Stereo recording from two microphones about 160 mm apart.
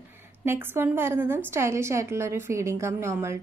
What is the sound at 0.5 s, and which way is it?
A woman's voice, 15° right (ahead or behind).